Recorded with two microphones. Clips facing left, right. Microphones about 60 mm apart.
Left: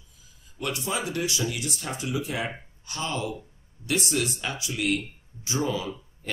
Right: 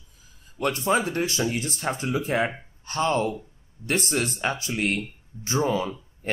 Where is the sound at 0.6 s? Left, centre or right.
Right.